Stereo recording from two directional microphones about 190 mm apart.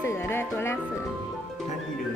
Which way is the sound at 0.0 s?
10° left (ahead or behind).